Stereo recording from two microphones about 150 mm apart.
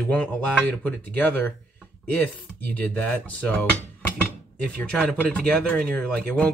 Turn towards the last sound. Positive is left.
turn(degrees=5)  # may be behind; listen again after turning